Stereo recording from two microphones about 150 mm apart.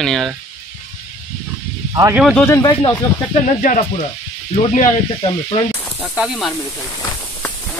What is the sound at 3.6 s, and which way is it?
Snake, 65° left (ahead or behind).